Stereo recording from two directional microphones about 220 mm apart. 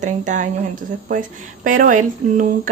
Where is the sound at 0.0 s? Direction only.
35° right (ahead or behind).